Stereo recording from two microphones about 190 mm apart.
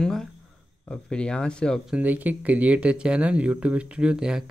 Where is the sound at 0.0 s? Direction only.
5° left (ahead or behind).